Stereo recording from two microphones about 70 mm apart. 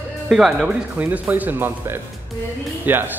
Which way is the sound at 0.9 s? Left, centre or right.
Right.